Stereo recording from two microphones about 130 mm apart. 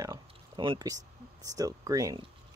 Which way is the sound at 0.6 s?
35° right (ahead or behind).